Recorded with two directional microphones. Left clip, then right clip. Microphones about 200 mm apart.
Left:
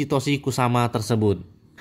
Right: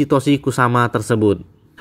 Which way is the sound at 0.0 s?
10° right (ahead or behind).